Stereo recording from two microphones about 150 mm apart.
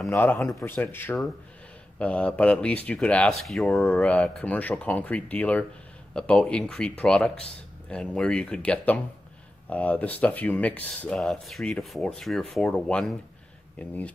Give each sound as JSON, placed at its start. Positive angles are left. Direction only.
{"t": 0.1, "sound": "speech", "side_deg": 15}